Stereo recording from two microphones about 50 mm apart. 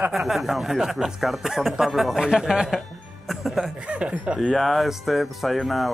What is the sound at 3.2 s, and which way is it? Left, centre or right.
Music, centre.